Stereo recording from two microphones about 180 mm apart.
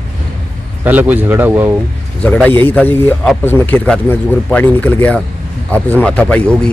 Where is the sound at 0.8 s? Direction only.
10° right (ahead or behind).